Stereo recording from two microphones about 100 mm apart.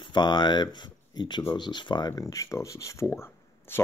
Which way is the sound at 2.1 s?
35° left (ahead or behind).